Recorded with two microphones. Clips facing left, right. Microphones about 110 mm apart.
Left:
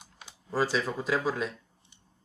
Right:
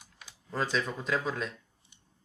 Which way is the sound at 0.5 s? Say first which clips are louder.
Left 3 dB; 5° left (ahead or behind).